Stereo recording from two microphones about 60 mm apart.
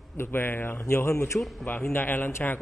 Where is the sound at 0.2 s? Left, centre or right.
Left.